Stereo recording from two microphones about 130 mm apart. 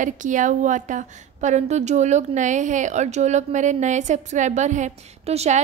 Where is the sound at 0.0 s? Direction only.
75° right (ahead or behind).